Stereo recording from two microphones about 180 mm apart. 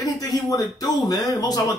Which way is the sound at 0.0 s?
20° left (ahead or behind).